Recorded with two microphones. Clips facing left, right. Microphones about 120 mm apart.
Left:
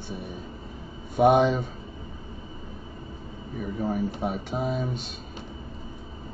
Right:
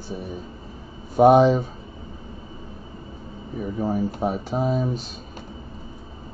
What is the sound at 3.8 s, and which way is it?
Speech, 40° right (ahead or behind).